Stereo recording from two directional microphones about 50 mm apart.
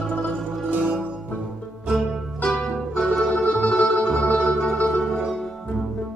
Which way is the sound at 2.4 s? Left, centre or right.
Centre.